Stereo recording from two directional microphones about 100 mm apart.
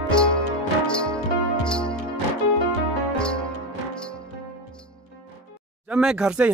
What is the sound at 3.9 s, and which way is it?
Music, 10° left (ahead or behind).